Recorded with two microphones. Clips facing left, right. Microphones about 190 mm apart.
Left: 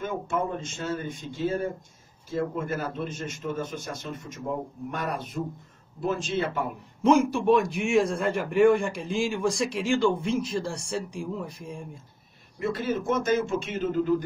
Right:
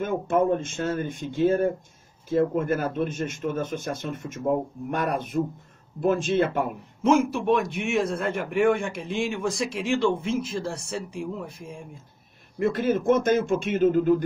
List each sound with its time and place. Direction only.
0.0 s speech: 55° right (ahead or behind)
7.0 s a man's voice: centre (ahead or behind)
12.5 s speech: 55° right (ahead or behind)